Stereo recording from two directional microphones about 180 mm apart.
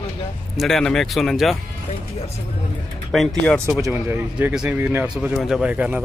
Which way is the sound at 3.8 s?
10° right (ahead or behind).